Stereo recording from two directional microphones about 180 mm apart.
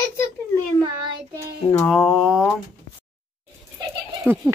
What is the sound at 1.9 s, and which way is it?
Speech, centre (ahead or behind).